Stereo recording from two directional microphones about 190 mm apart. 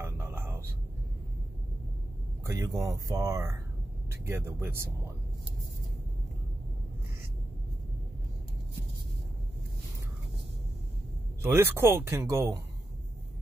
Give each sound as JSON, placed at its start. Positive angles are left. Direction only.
{"t": 0.0, "sound": "a sound", "side_deg": -15}
{"t": 2.4, "sound": "speech", "side_deg": -15}
{"t": 11.4, "sound": "speech", "side_deg": -10}